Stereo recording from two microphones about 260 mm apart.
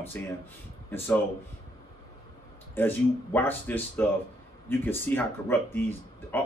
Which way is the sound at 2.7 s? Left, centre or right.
Centre.